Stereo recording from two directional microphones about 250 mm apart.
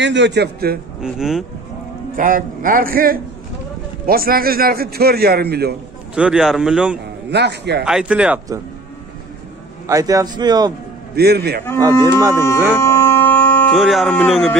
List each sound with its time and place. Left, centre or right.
0.0 s a man's voice: right
1.0 s a man's voice: centre
2.1 s a man's voice: right
6.1 s a man's voice: centre
7.2 s a man's voice: right
7.8 s a man's voice: centre
9.8 s a man's voice: centre
11.1 s a man's voice: right
12.4 s speech: centre
12.8 s a sound: centre